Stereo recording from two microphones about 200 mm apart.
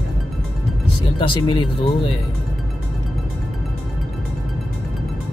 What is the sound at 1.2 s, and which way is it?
Speech, 25° left (ahead or behind).